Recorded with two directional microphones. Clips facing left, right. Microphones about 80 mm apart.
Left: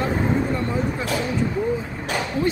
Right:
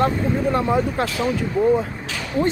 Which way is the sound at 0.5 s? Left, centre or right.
Right.